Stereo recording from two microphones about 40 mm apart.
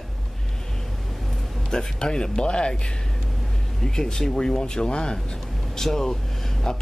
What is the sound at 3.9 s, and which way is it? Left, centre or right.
Speech, centre.